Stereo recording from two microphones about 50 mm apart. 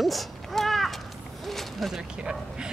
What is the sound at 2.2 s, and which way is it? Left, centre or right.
Bow-wow, centre.